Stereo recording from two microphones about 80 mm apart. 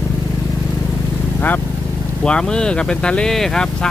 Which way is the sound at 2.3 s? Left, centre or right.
Centre.